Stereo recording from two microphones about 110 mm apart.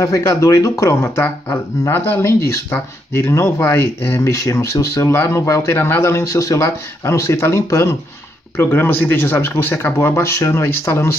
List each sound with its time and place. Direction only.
0.0 s speech: 25° left (ahead or behind)